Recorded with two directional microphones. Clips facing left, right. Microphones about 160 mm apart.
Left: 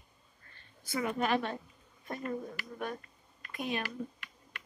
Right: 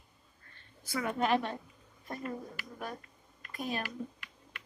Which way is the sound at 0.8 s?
25° left (ahead or behind).